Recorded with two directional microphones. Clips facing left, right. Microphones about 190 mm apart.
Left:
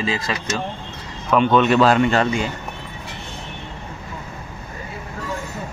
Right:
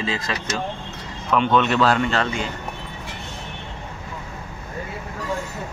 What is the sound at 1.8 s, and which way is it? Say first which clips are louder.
Speech: left 4 dB; 15° left (ahead or behind).